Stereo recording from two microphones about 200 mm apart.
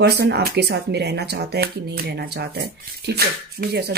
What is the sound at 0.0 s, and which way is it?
Speech, 50° right (ahead or behind).